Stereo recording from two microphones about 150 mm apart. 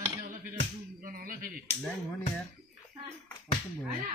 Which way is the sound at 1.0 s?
70° right (ahead or behind).